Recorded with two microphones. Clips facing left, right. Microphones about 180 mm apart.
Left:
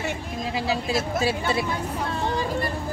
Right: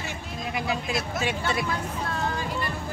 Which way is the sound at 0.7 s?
30° left (ahead or behind).